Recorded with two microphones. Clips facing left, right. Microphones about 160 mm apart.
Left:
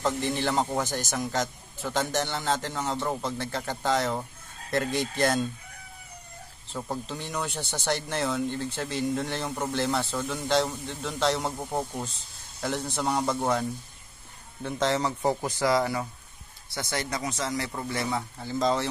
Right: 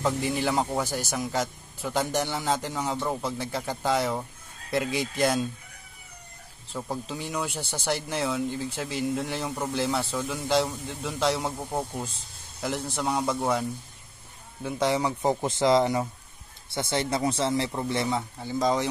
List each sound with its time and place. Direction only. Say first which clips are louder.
0.0 s speech: right 1 dB; 10° right (ahead or behind)
6.7 s speech: even; 5° left (ahead or behind)
7.1 s speech: right 1 dB; 10° right (ahead or behind)
15.4 s a man's voice: right 6 dB; 25° right (ahead or behind)